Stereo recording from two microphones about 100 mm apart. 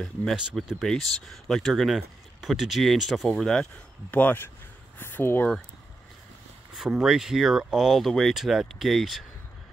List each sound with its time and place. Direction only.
0.0 s speech: 10° left (ahead or behind)
0.4 s speech: 5° right (ahead or behind)
3.3 s speech: 10° left (ahead or behind)
6.7 s speech: 5° right (ahead or behind)